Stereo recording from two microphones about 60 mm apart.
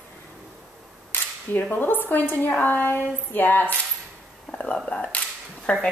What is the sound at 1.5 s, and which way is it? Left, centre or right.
Female singing, left.